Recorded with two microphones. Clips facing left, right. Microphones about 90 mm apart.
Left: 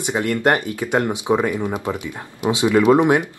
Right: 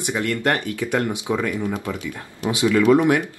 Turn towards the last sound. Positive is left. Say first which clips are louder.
# left 2 dB
turn(degrees=20)  # may be behind; listen again after turning